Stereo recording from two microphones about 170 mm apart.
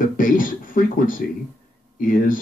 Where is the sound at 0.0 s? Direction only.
55° left (ahead or behind).